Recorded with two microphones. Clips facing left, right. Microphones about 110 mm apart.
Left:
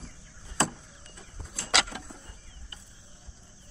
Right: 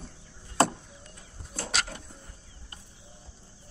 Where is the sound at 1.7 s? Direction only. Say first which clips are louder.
Left 5 dB; 90° left.